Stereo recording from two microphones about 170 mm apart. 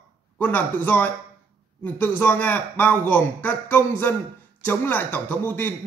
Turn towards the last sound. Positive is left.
turn(degrees=10)  # may be behind; listen again after turning